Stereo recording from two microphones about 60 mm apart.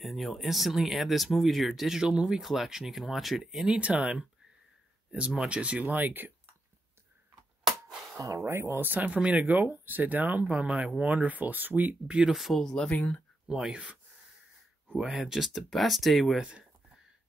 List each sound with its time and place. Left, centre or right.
0.0 s speech: centre
2.0 s speech: centre
2.4 s speech: centre
3.6 s speech: centre
8.2 s speech: right
12.1 s speech: centre
12.4 s speech: centre
12.6 s speech: centre
12.9 s speech: left
13.5 s speech: centre
15.1 s speech: centre
16.4 s a sound: centre